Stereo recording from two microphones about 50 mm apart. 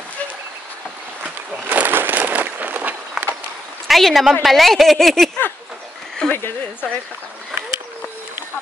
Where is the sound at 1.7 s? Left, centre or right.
Right.